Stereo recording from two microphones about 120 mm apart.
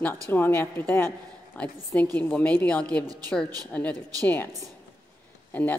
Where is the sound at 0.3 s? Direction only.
20° left (ahead or behind).